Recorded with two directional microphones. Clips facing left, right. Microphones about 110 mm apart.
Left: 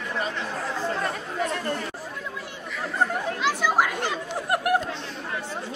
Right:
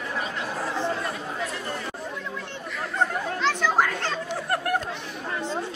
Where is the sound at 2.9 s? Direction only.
10° left (ahead or behind).